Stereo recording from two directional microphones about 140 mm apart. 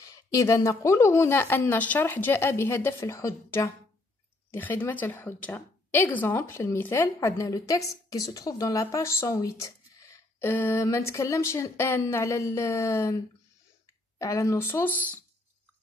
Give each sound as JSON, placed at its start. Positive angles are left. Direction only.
{"t": 0.0, "sound": "a woman's voice", "side_deg": 25}
{"t": 14.1, "sound": "a woman's voice", "side_deg": 25}